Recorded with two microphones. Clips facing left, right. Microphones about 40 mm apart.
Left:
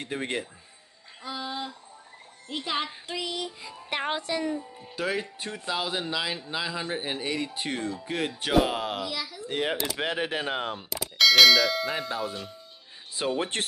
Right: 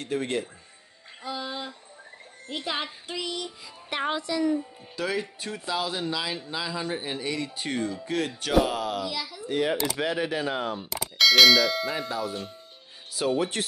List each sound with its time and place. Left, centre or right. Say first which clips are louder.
0.0 s speech: right 3 dB; left
1.2 s speech: even; centre
4.2 s speech: right 2 dB; left
4.9 s speech: even; centre
8.6 s speech: right 1 dB; left
9.0 s speech: right 1 dB; centre
9.5 s speech: right 3 dB; left
10.8 s speech: left 1 dB; centre
12.1 s speech: right 1 dB; left
13.4 s speech: right 2 dB; left